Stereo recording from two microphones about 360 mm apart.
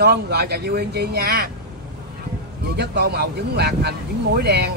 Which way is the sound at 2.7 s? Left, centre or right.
Right.